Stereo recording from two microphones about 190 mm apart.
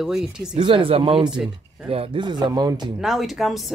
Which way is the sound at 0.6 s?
25° right (ahead or behind).